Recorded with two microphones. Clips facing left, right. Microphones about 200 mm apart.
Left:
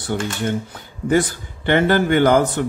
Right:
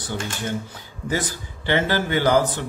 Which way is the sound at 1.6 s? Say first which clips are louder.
Left 6 dB; 55° left (ahead or behind).